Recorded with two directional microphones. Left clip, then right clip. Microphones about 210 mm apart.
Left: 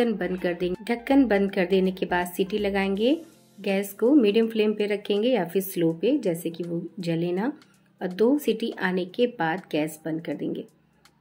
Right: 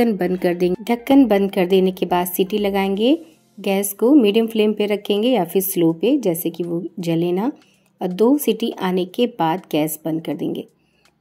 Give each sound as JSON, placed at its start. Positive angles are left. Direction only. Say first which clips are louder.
{"t": 0.0, "sound": "a woman's voice", "louder": "right 7 dB", "side_deg": -30}